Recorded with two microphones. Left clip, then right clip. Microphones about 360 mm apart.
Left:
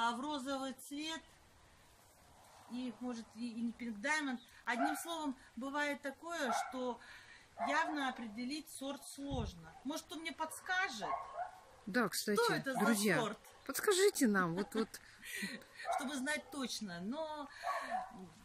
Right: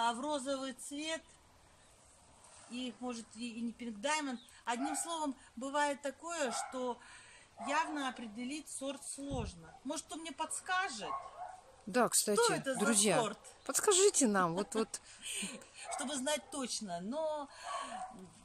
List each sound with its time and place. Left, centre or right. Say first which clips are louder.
0.0 s speech: right 3 dB; centre
2.7 s speech: right 2 dB; centre